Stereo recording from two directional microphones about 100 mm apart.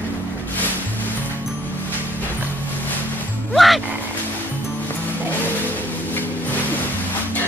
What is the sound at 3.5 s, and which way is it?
Music, centre (ahead or behind).